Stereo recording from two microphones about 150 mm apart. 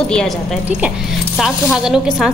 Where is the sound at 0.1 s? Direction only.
5° left (ahead or behind).